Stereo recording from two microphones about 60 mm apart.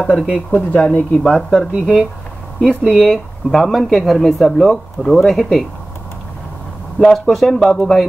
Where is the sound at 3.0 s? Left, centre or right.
Centre.